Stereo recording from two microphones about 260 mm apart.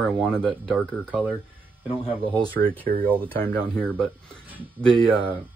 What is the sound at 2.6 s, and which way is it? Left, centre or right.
Speech, right.